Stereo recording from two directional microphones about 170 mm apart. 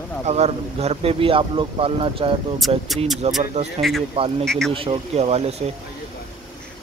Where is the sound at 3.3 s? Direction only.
40° right (ahead or behind).